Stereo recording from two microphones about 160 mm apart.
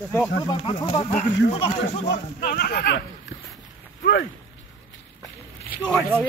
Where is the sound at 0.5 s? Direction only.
30° left (ahead or behind).